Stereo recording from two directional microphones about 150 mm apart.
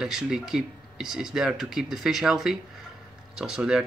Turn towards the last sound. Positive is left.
turn(degrees=-5)  # may be behind; listen again after turning